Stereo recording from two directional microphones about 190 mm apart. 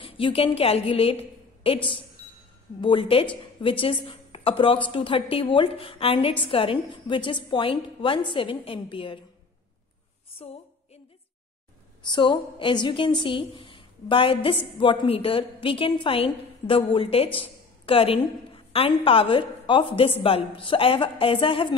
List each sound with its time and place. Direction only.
0.0 s a woman's voice: 30° left (ahead or behind)
12.0 s a woman's voice: 25° left (ahead or behind)